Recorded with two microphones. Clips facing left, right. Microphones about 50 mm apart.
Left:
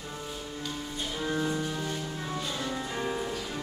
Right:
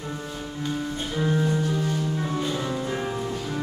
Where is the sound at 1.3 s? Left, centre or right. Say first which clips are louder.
Right 5 dB; centre.